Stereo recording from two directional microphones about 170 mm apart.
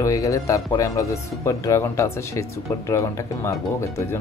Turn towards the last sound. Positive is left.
turn(degrees=15)  # may be behind; listen again after turning